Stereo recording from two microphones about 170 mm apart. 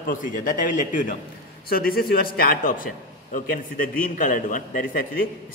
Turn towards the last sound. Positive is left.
turn(degrees=55)  # may be behind; listen again after turning